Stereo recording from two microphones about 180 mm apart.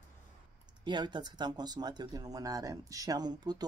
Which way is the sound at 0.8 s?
25° right (ahead or behind).